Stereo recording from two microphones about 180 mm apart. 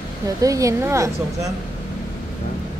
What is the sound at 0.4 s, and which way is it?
A woman's voice, 20° right (ahead or behind).